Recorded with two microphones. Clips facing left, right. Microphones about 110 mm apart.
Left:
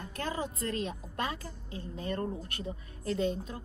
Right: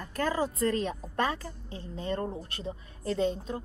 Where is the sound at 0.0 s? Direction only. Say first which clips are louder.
Right 6 dB; 40° right (ahead or behind).